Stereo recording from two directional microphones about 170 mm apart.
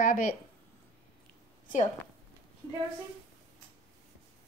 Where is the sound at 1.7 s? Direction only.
50° left (ahead or behind).